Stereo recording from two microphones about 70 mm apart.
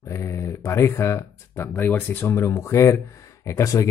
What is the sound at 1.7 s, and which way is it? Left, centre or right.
Speech, left.